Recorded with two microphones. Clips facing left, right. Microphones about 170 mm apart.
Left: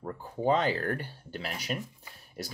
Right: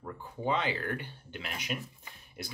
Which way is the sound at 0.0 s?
40° left (ahead or behind).